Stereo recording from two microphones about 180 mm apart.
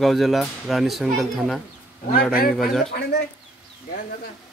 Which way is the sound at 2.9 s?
60° left (ahead or behind).